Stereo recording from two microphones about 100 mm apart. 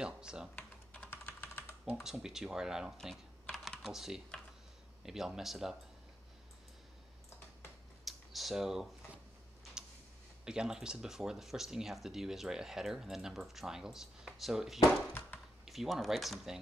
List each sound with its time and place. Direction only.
0.0 s speech: 10° right (ahead or behind)
0.6 s typing: 15° left (ahead or behind)
2.0 s speech: 5° right (ahead or behind)
8.0 s computer keyboard: centre (ahead or behind)
9.8 s tick-tock: 5° right (ahead or behind)
10.4 s speech: 5° right (ahead or behind)